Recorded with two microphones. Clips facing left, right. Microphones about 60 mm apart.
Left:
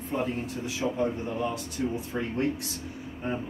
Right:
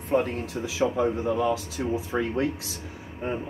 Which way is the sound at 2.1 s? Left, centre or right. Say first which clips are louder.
Right 8 dB; right.